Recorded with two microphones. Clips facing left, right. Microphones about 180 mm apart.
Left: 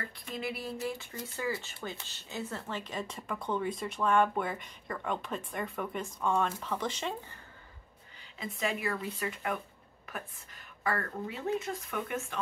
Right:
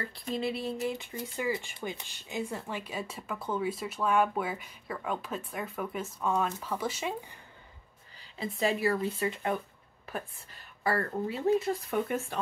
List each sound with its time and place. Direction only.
0.1 s speech: 30° right (ahead or behind); by 7.3 s 10° right (ahead or behind)
8.4 s speech: 30° right (ahead or behind)